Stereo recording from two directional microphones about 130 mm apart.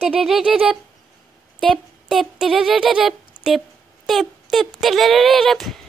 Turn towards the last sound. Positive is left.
turn(degrees=0)  # may be behind; listen again after turning